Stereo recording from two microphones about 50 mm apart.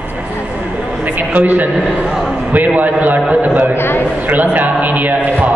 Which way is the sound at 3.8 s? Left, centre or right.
Left.